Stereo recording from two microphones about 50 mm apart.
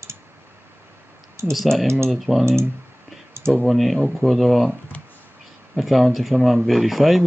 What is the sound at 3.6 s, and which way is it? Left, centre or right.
Speech, centre.